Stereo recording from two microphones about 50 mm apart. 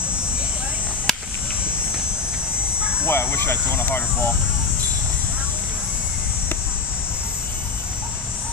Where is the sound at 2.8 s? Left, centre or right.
Right.